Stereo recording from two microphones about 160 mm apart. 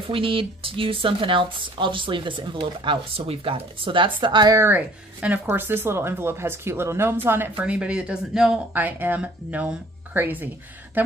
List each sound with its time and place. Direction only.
0.1 s speech: 35° right (ahead or behind); by 10.5 s 10° right (ahead or behind)